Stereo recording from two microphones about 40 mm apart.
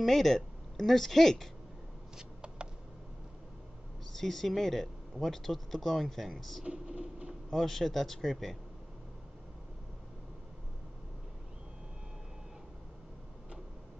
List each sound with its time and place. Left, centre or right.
0.0 s a woman's voice: centre
2.1 s a sound: right
4.1 s speech: centre
6.6 s speech: right
7.5 s speech: centre